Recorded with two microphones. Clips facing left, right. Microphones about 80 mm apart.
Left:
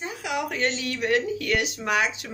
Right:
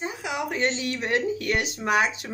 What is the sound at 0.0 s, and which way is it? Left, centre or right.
Speech, right.